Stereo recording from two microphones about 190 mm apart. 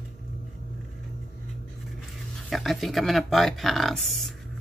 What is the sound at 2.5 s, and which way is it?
Speech, centre (ahead or behind).